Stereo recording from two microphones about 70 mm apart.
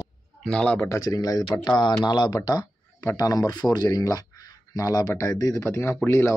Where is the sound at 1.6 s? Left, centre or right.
Left.